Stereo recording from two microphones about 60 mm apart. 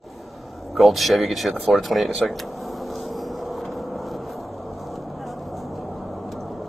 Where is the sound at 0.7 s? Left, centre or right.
Centre.